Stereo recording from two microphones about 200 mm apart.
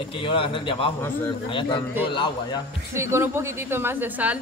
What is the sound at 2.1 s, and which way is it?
Speech, 25° left (ahead or behind).